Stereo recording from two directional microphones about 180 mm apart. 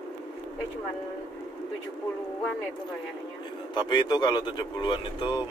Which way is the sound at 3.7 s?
25° left (ahead or behind).